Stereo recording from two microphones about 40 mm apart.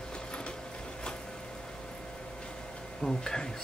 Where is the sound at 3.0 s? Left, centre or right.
Centre.